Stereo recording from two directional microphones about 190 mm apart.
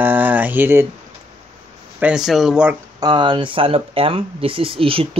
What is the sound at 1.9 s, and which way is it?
Speech, 5° right (ahead or behind).